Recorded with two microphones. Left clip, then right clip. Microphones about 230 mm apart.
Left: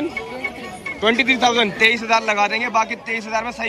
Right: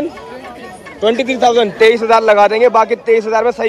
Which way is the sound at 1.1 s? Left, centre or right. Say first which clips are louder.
Right 1 dB; centre.